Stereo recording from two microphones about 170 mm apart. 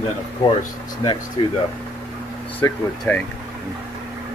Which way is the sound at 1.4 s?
30° left (ahead or behind).